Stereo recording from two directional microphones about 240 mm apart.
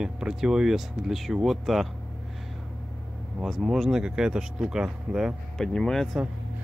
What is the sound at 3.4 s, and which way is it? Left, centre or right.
Speech, centre.